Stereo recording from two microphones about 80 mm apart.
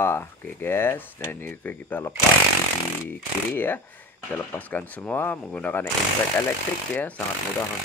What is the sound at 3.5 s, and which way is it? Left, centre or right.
Speech, left.